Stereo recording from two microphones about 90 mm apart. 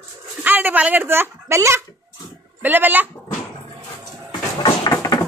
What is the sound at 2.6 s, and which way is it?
Speech, 20° right (ahead or behind).